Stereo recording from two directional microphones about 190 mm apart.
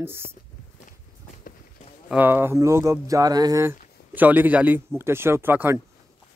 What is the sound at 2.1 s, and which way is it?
Speech, 10° right (ahead or behind).